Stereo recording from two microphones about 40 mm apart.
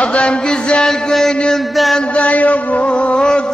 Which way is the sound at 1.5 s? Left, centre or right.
Centre.